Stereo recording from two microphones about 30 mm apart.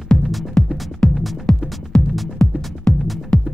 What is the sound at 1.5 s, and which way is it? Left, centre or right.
Music, left.